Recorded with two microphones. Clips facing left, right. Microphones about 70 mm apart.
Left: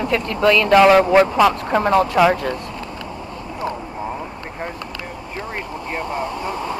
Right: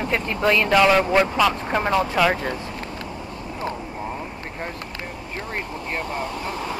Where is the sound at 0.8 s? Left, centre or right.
Centre.